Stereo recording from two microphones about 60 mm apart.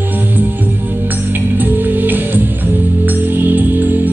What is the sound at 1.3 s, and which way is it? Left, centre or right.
Music, right.